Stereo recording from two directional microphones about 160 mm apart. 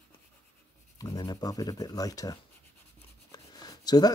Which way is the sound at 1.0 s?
25° left (ahead or behind).